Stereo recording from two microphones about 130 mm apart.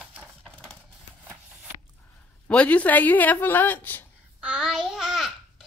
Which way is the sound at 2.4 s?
10° left (ahead or behind).